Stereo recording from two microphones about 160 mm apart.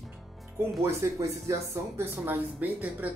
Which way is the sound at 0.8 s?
15° right (ahead or behind).